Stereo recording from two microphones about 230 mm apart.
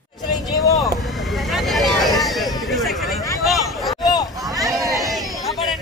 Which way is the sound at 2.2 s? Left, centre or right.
Centre.